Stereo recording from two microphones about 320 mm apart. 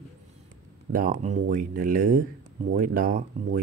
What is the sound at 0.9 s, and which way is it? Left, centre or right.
Speech, right.